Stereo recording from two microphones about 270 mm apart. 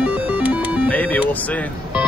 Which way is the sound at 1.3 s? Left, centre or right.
Centre.